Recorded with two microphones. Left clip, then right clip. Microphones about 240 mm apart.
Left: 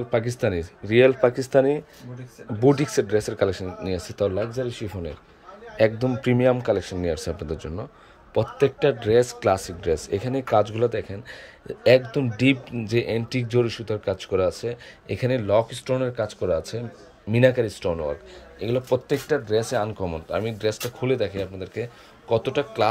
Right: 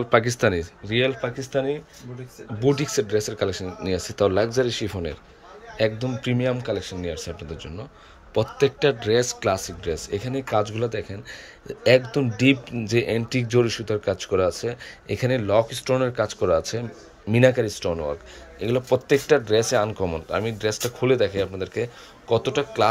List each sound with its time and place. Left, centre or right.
0.1 s speech: centre
0.8 s speech: centre
5.8 s speech: centre
8.4 s speech: centre